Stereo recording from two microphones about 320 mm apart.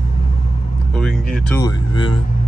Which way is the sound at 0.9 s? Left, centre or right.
Centre.